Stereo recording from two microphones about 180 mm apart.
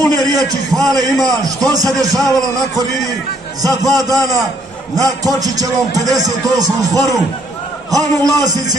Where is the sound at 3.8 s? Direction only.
20° right (ahead or behind).